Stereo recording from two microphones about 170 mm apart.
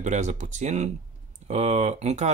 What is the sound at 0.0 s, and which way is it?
Speech, 45° right (ahead or behind).